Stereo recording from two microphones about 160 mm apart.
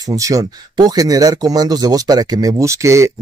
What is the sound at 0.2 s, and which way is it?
Speech, 20° right (ahead or behind).